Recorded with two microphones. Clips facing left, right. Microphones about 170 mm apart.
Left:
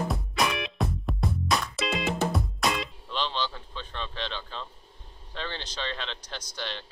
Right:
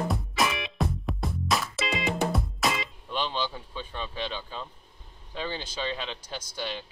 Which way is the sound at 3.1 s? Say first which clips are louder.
Right 1 dB; 10° right (ahead or behind).